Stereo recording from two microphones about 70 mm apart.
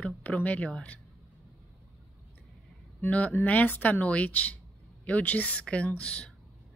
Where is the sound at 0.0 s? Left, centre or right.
Left.